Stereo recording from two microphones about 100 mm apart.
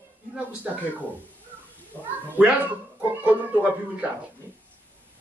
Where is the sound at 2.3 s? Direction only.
15° right (ahead or behind).